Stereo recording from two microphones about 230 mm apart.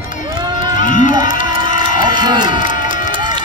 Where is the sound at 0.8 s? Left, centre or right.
Left.